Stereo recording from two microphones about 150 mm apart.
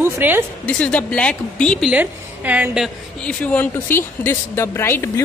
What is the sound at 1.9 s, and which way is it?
A woman's voice, 10° right (ahead or behind).